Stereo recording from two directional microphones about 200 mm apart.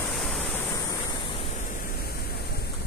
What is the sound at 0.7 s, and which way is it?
Waves, 20° left (ahead or behind).